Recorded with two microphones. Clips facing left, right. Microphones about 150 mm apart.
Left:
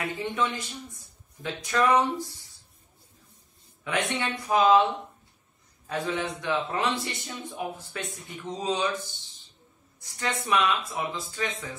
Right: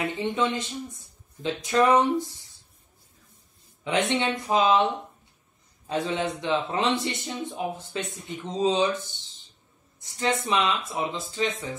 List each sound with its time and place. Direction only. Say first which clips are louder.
0.0 s a man's voice: right 3 dB; 20° right (ahead or behind)
3.8 s a man's voice: right 4 dB; 25° right (ahead or behind)
5.9 s a man's voice: right 3 dB; 20° right (ahead or behind)
10.1 s a man's voice: right 2 dB; 20° right (ahead or behind)